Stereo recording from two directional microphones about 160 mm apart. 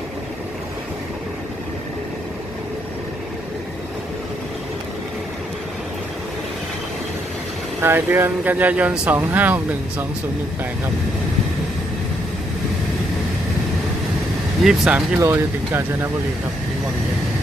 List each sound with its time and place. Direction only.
7.8 s speech: 15° right (ahead or behind)
14.6 s speech: centre (ahead or behind)
15.1 s speech: 15° right (ahead or behind)